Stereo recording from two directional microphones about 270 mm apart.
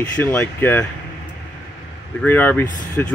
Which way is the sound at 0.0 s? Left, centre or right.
Centre.